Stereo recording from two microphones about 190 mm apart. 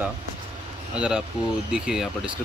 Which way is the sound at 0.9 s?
5° right (ahead or behind).